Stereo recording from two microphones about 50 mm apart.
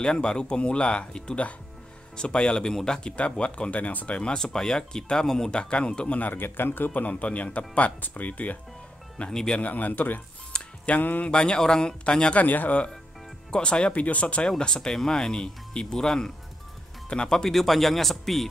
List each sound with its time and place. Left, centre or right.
0.0 s speech: centre
4.2 s speech: centre
6.1 s a man's voice: left
6.9 s speech: left
9.3 s speech: centre
9.6 s speech: left
10.5 s music: centre
11.0 s speech: left
11.2 s speech: centre
12.4 s speech: left
13.5 s speech: centre